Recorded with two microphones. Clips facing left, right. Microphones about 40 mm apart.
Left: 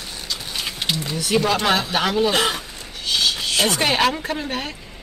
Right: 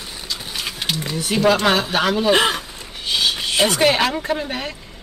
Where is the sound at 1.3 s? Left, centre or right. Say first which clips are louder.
Right 3 dB; centre.